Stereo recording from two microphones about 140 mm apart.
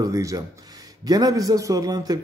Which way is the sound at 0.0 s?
25° right (ahead or behind).